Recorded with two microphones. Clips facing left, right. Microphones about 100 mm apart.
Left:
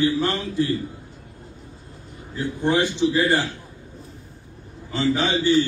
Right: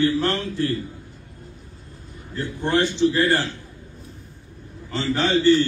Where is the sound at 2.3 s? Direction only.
15° left (ahead or behind).